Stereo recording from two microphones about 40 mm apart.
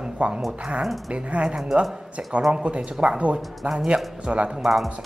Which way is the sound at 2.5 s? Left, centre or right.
Right.